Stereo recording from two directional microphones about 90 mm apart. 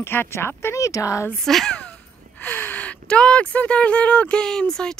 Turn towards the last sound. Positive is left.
turn(degrees=10)  # may be behind; listen again after turning